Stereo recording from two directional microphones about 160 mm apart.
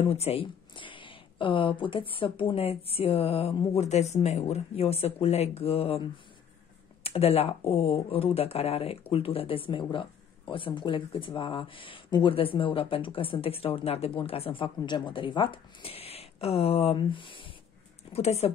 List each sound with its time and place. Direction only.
0.1 s speech: 40° left (ahead or behind)